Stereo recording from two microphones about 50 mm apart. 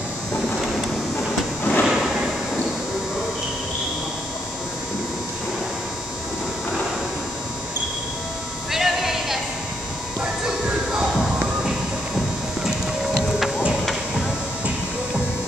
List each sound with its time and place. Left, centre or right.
1.6 s drawer open or close: left
1.9 s a sound: centre
8.7 s music: centre
10.4 s music: centre